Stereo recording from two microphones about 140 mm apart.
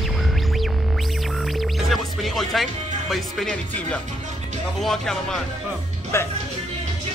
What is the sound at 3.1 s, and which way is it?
A man's voice, 5° left (ahead or behind).